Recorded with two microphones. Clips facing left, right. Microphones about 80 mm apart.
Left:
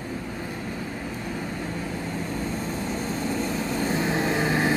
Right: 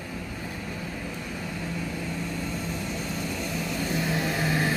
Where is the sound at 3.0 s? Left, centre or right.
Left.